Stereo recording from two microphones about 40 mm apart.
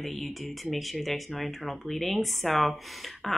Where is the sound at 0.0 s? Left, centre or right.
Centre.